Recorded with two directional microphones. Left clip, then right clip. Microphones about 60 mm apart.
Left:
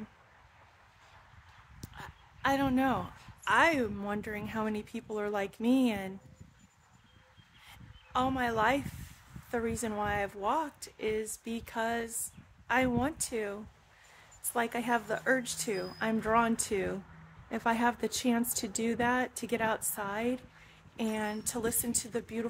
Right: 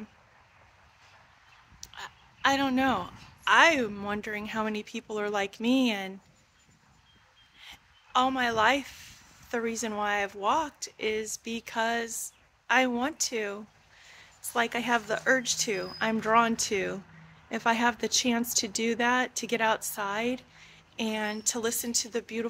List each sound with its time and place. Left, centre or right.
1.8 s a man's voice: centre
7.6 s a sound: left
9.5 s a woman's voice: centre